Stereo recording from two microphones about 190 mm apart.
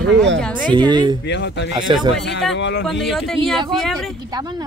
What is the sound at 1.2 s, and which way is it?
Speech, 65° left (ahead or behind).